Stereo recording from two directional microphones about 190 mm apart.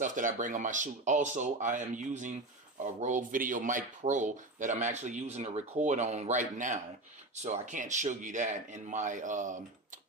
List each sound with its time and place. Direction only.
0.0 s speech: 45° right (ahead or behind)